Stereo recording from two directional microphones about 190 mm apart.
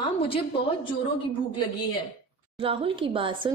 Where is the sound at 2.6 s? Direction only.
30° right (ahead or behind).